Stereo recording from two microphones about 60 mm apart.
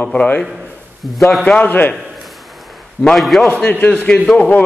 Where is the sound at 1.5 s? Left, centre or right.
Left.